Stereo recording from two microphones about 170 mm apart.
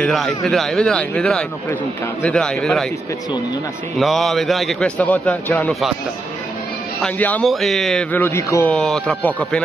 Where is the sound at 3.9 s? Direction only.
Centre (ahead or behind).